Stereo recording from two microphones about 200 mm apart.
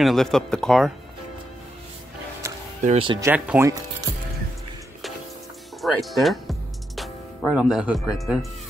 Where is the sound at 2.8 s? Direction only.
30° right (ahead or behind).